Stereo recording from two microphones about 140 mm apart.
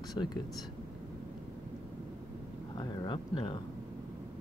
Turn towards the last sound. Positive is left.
turn(degrees=35)  # may be behind; listen again after turning